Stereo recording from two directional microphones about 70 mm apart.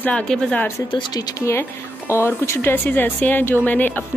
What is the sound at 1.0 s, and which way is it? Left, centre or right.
Speech, left.